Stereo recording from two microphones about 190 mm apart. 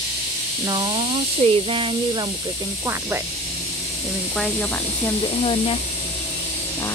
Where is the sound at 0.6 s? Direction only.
25° right (ahead or behind).